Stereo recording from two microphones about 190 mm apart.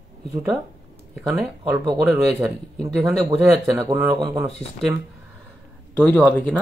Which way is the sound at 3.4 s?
Centre (ahead or behind).